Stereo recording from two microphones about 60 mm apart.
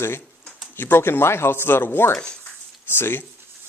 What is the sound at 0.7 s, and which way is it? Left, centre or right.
Speech, left.